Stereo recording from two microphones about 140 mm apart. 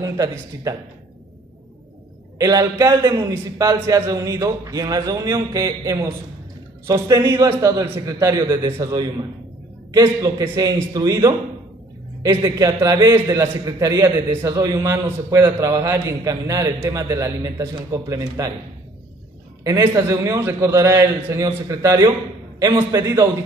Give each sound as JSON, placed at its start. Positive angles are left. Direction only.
{"t": 0.0, "sound": "a man's voice", "side_deg": -25}
{"t": 2.3, "sound": "a man's voice", "side_deg": -25}
{"t": 12.4, "sound": "a man's voice", "side_deg": -25}
{"t": 19.8, "sound": "a man's voice", "side_deg": -20}